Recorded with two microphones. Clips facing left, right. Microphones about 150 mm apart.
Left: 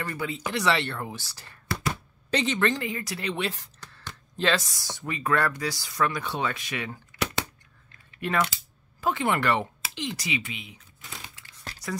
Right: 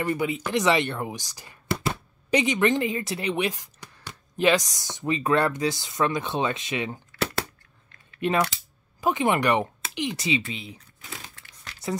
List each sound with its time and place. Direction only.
0.0 s speech: 15° right (ahead or behind)
8.2 s speech: 20° right (ahead or behind)